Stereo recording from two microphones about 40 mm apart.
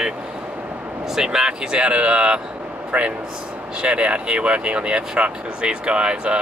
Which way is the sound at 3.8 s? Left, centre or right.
Right.